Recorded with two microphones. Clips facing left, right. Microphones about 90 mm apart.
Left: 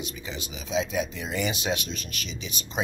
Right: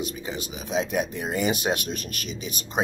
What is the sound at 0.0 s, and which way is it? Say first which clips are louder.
Speech: right 5 dB; 40° right (ahead or behind).